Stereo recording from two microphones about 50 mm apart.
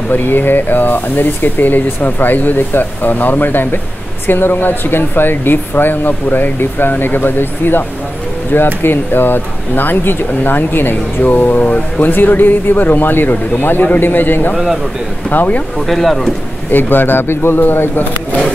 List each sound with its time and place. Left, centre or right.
0.1 s speech: left
15.2 s speech: left
15.9 s speech: centre
16.7 s speech: left